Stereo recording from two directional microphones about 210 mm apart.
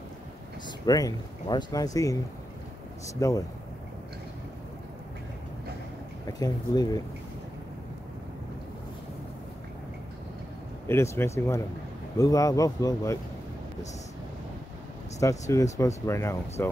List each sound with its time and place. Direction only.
0.7 s speech: 15° left (ahead or behind)
3.2 s speech: 15° left (ahead or behind)
6.4 s speech: 20° left (ahead or behind)
10.9 s speech: 10° left (ahead or behind)
15.1 s speech: 15° left (ahead or behind)